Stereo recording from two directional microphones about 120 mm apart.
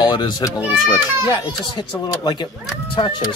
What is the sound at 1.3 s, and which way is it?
Speech, 40° left (ahead or behind).